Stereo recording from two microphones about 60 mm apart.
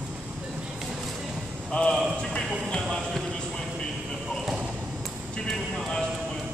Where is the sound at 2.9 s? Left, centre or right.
Centre.